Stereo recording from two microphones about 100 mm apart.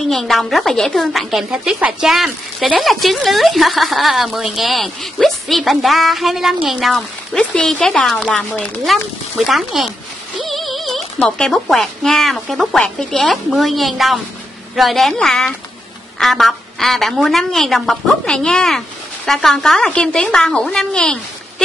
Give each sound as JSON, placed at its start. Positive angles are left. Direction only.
{"t": 0.1, "sound": "a woman's voice", "side_deg": 5}
{"t": 10.4, "sound": "music", "side_deg": 0}
{"t": 11.1, "sound": "a woman's voice", "side_deg": 5}